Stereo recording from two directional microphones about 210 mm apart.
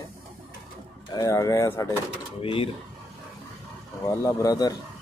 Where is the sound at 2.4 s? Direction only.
25° left (ahead or behind).